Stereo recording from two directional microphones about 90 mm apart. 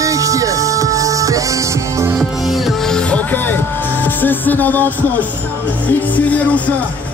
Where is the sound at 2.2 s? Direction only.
Centre (ahead or behind); by 5.3 s 20° left (ahead or behind).